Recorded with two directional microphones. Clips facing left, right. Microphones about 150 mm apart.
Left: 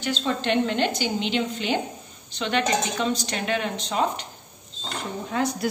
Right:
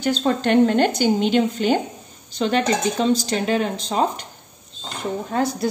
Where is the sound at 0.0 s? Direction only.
45° right (ahead or behind).